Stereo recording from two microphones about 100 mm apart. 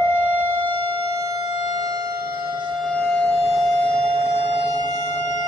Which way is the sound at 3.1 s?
Centre (ahead or behind).